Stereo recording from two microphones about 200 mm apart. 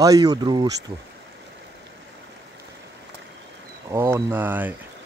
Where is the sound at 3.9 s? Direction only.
15° right (ahead or behind).